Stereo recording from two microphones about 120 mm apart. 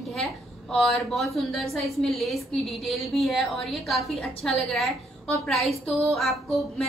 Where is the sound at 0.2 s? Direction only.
Centre (ahead or behind).